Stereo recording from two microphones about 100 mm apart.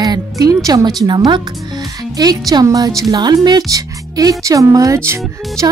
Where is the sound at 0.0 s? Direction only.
35° right (ahead or behind).